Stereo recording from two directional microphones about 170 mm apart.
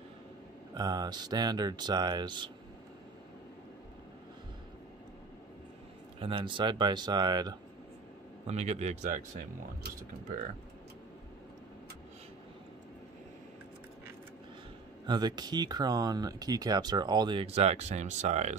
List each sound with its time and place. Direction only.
0.7 s speech: 25° right (ahead or behind)
6.1 s speech: 30° right (ahead or behind)
8.5 s a man's voice: 40° right (ahead or behind)
15.0 s speech: 25° right (ahead or behind); by 18.6 s 40° right (ahead or behind)